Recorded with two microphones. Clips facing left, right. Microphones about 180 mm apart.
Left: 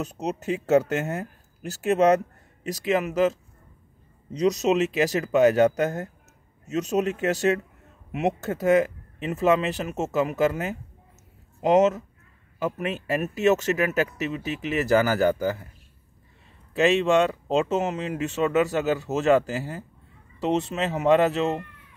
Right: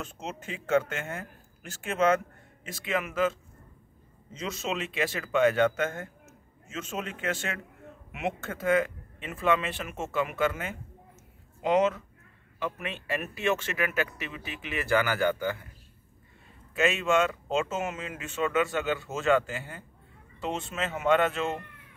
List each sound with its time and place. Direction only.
0.0 s speech: 40° left (ahead or behind)
16.7 s speech: 35° left (ahead or behind)